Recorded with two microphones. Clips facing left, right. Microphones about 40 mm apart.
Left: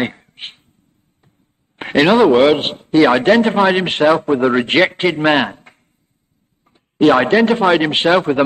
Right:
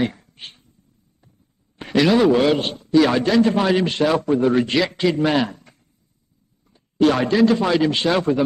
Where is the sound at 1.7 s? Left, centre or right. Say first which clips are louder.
Left 5 dB; left.